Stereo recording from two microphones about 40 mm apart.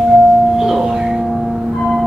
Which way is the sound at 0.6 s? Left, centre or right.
Centre.